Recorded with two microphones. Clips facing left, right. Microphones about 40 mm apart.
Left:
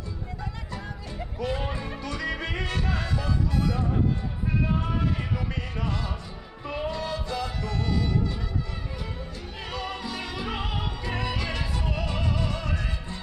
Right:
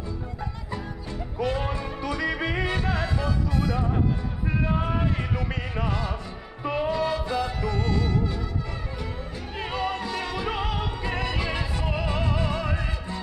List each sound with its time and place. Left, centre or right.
1.5 s music: centre
4.6 s music: centre
9.6 s music: centre
10.0 s music: centre
11.3 s music: centre